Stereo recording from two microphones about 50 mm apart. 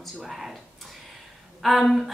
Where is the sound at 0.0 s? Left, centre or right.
Centre.